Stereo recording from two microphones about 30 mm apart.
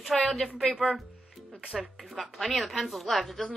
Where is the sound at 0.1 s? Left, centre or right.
Centre.